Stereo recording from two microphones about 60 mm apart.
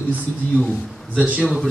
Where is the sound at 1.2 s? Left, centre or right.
Right.